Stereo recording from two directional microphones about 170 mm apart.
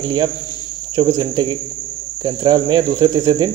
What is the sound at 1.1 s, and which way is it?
Speech, 25° right (ahead or behind).